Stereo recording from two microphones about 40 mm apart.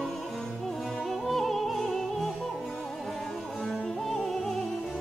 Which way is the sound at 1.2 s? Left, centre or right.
Centre.